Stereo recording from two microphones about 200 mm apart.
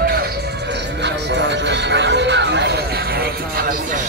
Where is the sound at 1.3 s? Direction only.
60° right (ahead or behind).